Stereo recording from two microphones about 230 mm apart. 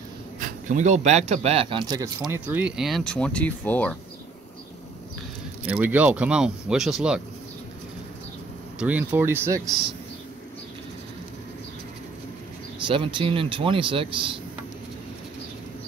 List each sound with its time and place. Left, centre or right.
0.4 s speech: right; by 3.9 s centre
5.7 s speech: centre
8.7 s speech: centre
12.8 s speech: right